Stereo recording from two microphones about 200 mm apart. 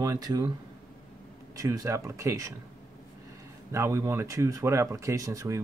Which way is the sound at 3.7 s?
15° right (ahead or behind).